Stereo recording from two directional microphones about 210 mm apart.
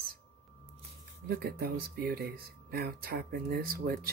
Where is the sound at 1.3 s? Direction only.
50° right (ahead or behind).